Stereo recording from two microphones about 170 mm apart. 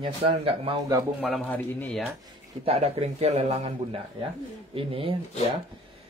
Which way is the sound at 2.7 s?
35° right (ahead or behind).